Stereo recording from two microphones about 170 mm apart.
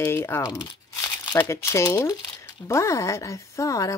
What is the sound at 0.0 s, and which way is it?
A woman's voice, 15° left (ahead or behind).